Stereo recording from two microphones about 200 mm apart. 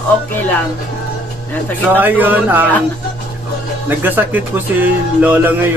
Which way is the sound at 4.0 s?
10° right (ahead or behind).